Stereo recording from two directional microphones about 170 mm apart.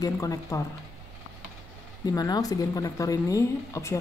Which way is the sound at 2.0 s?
20° left (ahead or behind).